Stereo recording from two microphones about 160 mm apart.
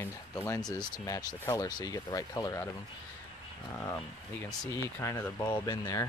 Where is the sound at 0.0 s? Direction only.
15° left (ahead or behind).